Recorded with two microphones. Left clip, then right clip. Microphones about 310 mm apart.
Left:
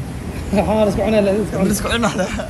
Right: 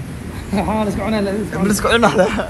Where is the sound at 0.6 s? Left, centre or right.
Right.